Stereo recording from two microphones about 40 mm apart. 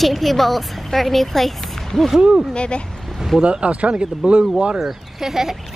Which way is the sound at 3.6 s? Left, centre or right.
Right.